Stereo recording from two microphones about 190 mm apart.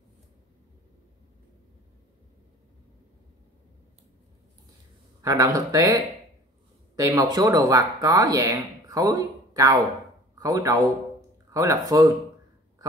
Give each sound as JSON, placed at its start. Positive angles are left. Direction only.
{"t": 5.2, "sound": "speech", "side_deg": -20}